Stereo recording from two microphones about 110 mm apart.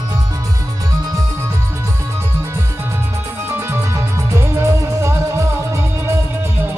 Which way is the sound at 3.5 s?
25° right (ahead or behind).